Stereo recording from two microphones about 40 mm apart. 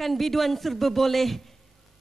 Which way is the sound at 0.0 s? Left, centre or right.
Centre.